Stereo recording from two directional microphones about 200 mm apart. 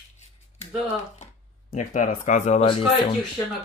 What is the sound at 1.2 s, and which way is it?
Speech, 35° left (ahead or behind).